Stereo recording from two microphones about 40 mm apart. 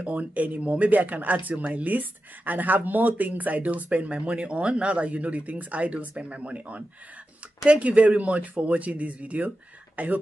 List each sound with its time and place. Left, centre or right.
0.0 s speech: right
7.9 s speech: right